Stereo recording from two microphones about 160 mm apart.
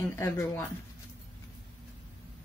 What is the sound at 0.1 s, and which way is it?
Speech, 15° left (ahead or behind).